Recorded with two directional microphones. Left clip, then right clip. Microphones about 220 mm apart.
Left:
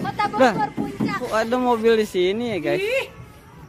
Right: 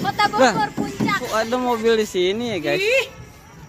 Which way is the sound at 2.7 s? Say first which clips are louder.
Right 6 dB; 10° right (ahead or behind).